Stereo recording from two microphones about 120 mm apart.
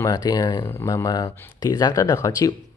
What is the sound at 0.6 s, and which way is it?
Speech, 25° left (ahead or behind).